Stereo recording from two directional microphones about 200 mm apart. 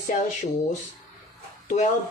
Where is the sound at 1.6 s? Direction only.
35° left (ahead or behind).